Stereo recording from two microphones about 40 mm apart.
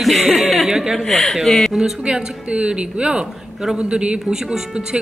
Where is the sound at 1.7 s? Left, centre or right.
Centre.